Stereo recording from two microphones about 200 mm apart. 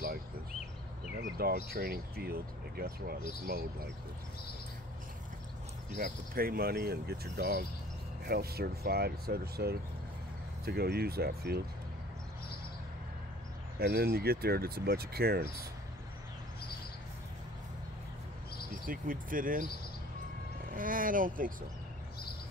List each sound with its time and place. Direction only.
1.2 s speech: 50° right (ahead or behind)
5.9 s speech: 45° right (ahead or behind)
13.7 s speech: 50° right (ahead or behind)
18.9 s speech: 45° right (ahead or behind)
20.7 s speech: 45° right (ahead or behind)